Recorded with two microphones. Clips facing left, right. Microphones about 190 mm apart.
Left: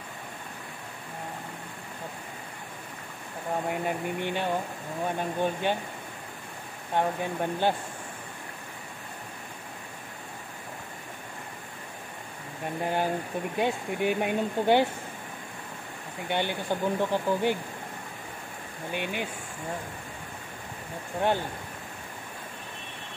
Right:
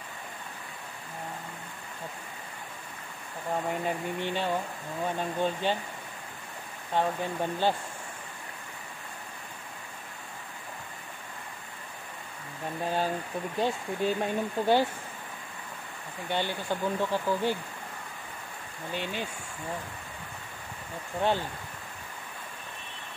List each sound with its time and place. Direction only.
3.6 s speech: 10° left (ahead or behind)
6.9 s speech: 15° left (ahead or behind)
12.8 s speech: 15° left (ahead or behind)
16.3 s speech: 15° left (ahead or behind)
18.9 s speech: 15° left (ahead or behind)